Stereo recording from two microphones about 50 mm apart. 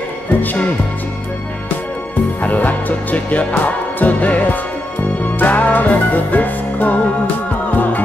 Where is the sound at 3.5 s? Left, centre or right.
Left.